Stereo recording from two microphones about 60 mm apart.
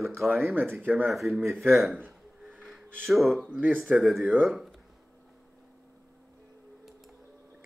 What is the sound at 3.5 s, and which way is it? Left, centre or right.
Speech, right.